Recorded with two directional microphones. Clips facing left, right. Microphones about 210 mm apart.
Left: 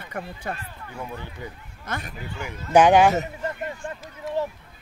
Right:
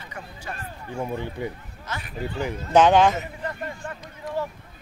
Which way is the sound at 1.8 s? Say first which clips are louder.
Left 3 dB; 55° left (ahead or behind).